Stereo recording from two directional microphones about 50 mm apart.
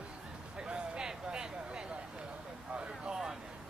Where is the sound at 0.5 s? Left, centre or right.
Centre.